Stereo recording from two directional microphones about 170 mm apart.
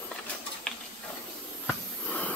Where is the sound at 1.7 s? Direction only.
10° left (ahead or behind).